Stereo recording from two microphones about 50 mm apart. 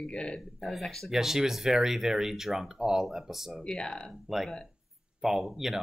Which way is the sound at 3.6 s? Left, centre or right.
Centre.